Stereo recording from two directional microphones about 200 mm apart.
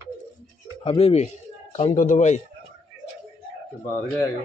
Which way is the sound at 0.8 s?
30° left (ahead or behind).